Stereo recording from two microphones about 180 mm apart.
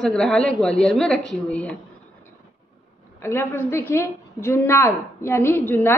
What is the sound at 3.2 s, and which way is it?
A woman's voice, 15° left (ahead or behind).